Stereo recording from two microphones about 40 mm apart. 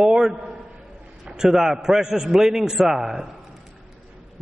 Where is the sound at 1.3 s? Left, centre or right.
Centre.